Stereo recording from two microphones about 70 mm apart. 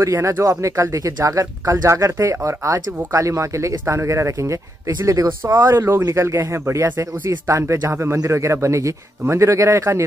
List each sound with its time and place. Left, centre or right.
0.0 s speech: right
5.7 s speech: right
8.2 s speech: right